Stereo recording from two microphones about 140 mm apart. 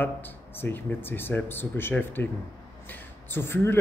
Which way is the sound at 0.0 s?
15° left (ahead or behind).